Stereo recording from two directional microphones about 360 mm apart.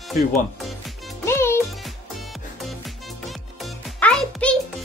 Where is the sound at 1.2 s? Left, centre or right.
Centre.